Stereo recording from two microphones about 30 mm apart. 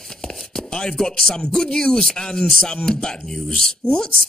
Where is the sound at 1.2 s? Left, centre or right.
Centre.